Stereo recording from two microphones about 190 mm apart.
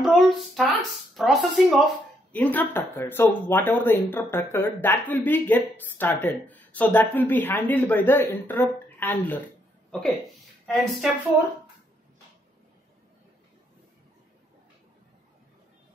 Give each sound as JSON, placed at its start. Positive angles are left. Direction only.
{"t": 0.0, "sound": "a woman's voice", "side_deg": 0}